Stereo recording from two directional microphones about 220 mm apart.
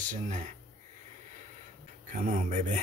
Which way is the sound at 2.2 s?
35° right (ahead or behind).